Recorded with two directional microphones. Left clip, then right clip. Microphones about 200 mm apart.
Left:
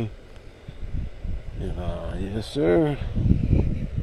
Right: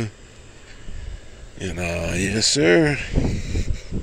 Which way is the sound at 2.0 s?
55° right (ahead or behind).